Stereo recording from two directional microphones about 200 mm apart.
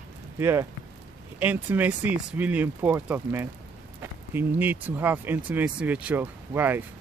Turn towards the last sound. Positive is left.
turn(degrees=-10)  # may be behind; listen again after turning